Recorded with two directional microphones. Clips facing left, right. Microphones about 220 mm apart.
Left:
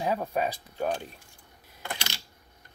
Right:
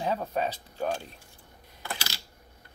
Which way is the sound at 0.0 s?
10° left (ahead or behind).